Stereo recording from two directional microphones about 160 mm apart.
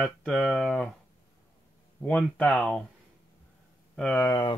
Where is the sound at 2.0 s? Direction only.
10° left (ahead or behind).